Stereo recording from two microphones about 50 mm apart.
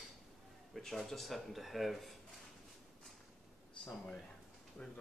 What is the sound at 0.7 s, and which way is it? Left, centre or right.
Speech, centre.